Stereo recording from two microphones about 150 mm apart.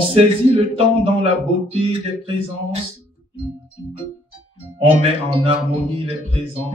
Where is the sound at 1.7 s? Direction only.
40° right (ahead or behind).